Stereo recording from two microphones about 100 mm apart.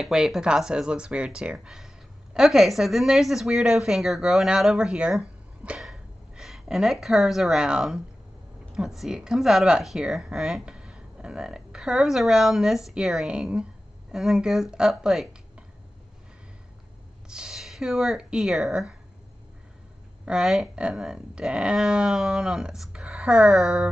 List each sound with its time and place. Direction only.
0.0 s speech: 5° right (ahead or behind)
17.3 s speech: 5° right (ahead or behind)
20.2 s speech: 5° right (ahead or behind)